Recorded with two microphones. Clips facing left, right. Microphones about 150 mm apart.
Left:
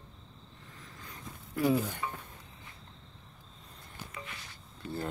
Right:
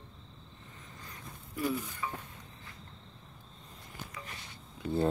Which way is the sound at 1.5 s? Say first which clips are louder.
Left 6 dB; 90° left.